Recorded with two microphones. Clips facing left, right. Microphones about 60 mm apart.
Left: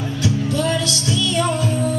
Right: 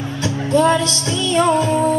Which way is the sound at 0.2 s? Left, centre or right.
Right.